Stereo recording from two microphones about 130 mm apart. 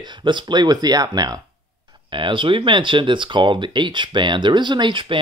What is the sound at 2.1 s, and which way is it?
Speech, 40° right (ahead or behind).